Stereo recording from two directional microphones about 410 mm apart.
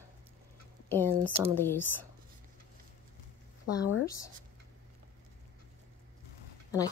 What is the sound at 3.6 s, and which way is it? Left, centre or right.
Speech, left.